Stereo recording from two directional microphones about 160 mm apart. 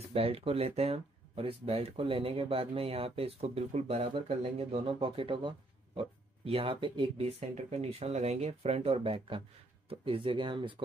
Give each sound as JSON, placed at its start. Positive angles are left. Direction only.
{"t": 0.1, "sound": "speech", "side_deg": -40}